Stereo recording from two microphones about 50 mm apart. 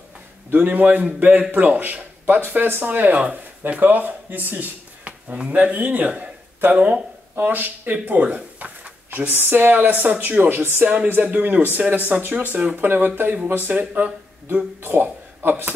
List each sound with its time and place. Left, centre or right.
0.5 s a man's voice: right
5.0 s a sound: right
5.5 s speech: right
9.3 s speech: right
11.1 s speech: right